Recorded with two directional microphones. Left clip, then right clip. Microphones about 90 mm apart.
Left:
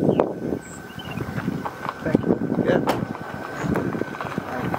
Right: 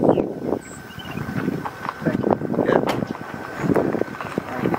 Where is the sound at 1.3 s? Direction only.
25° right (ahead or behind).